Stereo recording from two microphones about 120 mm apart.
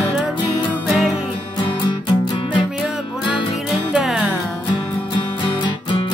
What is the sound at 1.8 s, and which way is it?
Music, 40° left (ahead or behind).